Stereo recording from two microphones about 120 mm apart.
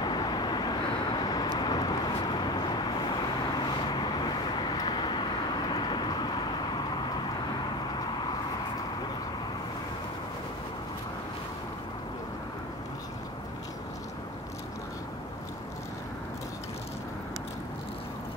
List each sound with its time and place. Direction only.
0.0 s vehicle: 35° left (ahead or behind)